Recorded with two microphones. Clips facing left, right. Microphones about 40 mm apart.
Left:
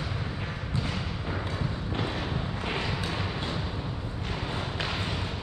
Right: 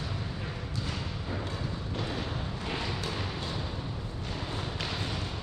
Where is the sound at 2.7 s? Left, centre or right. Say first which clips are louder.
Left 2 dB; left.